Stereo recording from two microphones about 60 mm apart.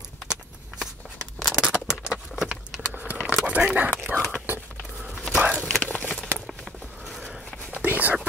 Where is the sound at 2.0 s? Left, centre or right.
Centre.